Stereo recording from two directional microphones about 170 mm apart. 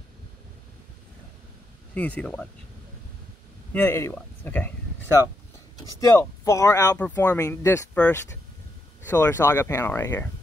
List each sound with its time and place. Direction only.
2.0 s speech: 10° left (ahead or behind)
3.7 s speech: 15° left (ahead or behind)
5.9 s speech: 20° left (ahead or behind)
7.0 s speech: 10° left (ahead or behind)